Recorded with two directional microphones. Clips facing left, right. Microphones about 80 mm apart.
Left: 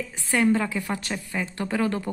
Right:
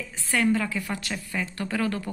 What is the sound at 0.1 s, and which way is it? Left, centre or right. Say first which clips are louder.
Speech: left 2 dB; left.